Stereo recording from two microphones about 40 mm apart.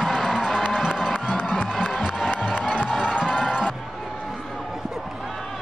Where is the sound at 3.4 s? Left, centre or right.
Centre.